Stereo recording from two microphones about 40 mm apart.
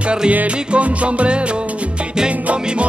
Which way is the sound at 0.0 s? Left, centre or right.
Right.